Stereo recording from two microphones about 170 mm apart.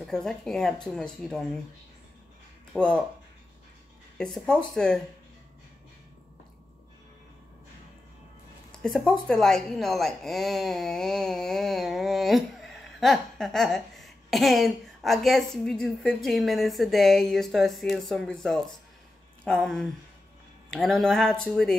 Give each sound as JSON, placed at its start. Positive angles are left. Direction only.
{"t": 0.0, "sound": "speech", "side_deg": 0}
{"t": 2.7, "sound": "speech", "side_deg": 5}
{"t": 4.2, "sound": "speech", "side_deg": 5}
{"t": 8.8, "sound": "speech", "side_deg": 5}